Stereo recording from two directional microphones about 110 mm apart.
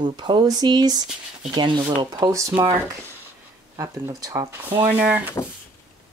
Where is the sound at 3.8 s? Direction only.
35° right (ahead or behind).